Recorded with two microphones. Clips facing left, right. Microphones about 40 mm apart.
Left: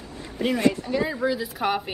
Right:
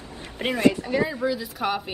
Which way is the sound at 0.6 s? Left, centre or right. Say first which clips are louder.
Right 4 dB; right.